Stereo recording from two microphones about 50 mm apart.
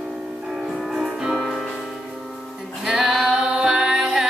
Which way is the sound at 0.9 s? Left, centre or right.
Centre.